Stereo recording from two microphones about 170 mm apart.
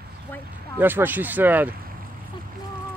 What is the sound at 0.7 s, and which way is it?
Speech, 10° right (ahead or behind).